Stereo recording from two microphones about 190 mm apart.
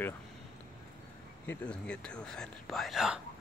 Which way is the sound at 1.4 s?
5° left (ahead or behind).